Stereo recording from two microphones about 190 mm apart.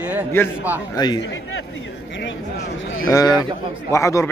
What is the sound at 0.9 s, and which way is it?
Speech, 20° left (ahead or behind).